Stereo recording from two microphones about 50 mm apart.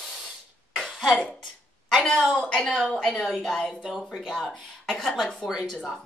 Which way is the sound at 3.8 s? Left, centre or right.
Centre.